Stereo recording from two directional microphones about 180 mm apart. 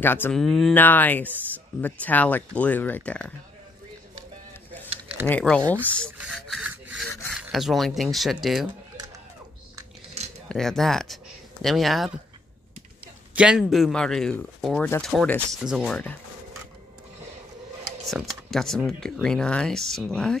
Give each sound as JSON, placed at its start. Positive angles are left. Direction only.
{"t": 0.0, "sound": "speech", "side_deg": 10}
{"t": 5.2, "sound": "speech", "side_deg": 5}
{"t": 6.1, "sound": "rub", "side_deg": -5}
{"t": 7.1, "sound": "rub", "side_deg": 10}
{"t": 7.3, "sound": "speech", "side_deg": -5}
{"t": 10.2, "sound": "a sound", "side_deg": -35}
{"t": 10.5, "sound": "speech", "side_deg": 0}
{"t": 13.3, "sound": "speech", "side_deg": -5}
{"t": 18.0, "sound": "speech", "side_deg": 0}